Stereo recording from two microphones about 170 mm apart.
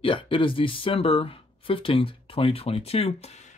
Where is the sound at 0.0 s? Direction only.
30° left (ahead or behind).